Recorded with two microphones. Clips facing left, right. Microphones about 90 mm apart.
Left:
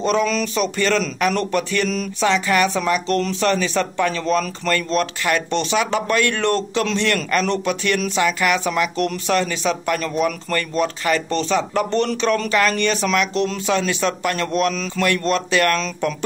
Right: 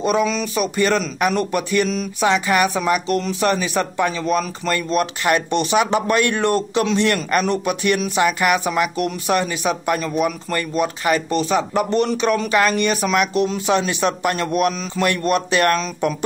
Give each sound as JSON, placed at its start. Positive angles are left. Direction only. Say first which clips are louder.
{"t": 0.0, "sound": "speech", "louder": "even", "side_deg": -10}
{"t": 0.7, "sound": "speech", "louder": "right 3 dB", "side_deg": -15}